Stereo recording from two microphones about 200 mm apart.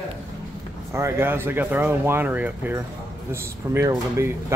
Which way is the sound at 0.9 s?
15° right (ahead or behind).